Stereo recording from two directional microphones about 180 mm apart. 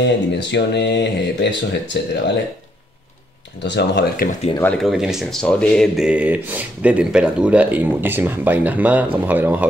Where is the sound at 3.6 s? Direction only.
70° left (ahead or behind).